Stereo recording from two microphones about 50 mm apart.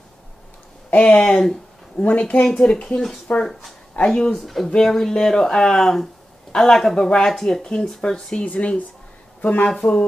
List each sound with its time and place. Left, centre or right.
0.8 s speech: left
2.0 s speech: left
2.4 s speech: centre
4.1 s speech: centre
8.5 s speech: left
9.7 s speech: centre